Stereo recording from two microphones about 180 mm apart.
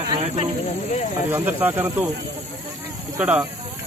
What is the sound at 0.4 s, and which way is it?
Speech, 45° left (ahead or behind).